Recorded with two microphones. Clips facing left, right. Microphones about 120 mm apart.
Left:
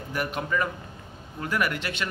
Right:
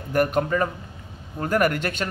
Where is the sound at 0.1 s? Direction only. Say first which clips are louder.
Right 8 dB; 50° right (ahead or behind).